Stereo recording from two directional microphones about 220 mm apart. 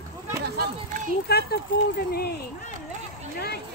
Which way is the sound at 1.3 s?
45° left (ahead or behind).